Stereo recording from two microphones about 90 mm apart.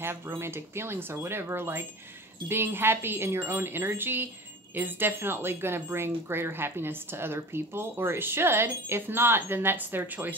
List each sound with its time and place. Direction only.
0.0 s speech: 25° right (ahead or behind)